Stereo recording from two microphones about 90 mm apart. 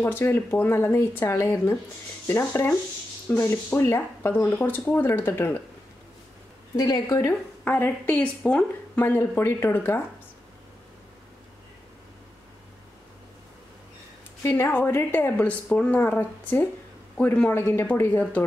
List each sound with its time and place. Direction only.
0.0 s speech: 25° left (ahead or behind)
6.8 s a woman's voice: 45° left (ahead or behind)
7.2 s speech: 25° left (ahead or behind)
14.4 s speech: 25° left (ahead or behind)